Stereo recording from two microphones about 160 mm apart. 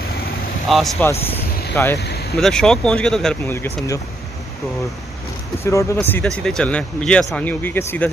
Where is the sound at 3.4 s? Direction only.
20° left (ahead or behind).